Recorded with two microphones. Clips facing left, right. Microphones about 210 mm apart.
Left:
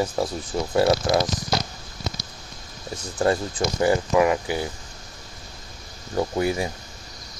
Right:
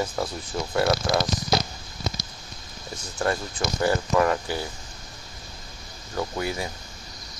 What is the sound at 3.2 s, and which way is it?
Speech, 30° left (ahead or behind).